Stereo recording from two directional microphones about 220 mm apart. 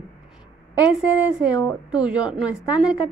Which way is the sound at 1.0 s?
5° right (ahead or behind).